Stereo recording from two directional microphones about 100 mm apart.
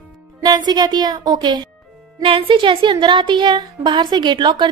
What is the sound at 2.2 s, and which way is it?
Speech, 60° right (ahead or behind).